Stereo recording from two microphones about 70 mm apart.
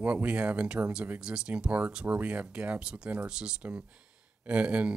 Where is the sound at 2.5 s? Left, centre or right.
Centre.